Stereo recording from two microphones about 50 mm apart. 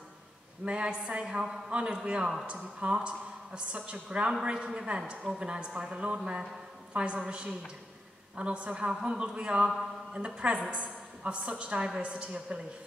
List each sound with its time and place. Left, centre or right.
0.7 s a woman's voice: right